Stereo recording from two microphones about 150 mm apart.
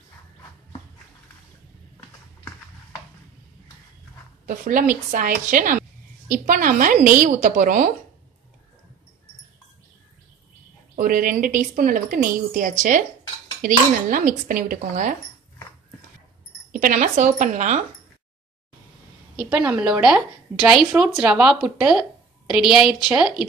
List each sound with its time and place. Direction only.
4.5 s a woman's voice: 65° right (ahead or behind)
11.0 s a woman's voice: 65° right (ahead or behind)
16.7 s a woman's voice: 65° right (ahead or behind)
19.5 s speech: 5° right (ahead or behind)